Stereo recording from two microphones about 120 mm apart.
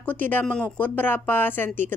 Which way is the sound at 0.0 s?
15° left (ahead or behind).